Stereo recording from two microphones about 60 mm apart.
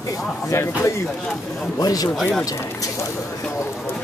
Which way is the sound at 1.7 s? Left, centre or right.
Left.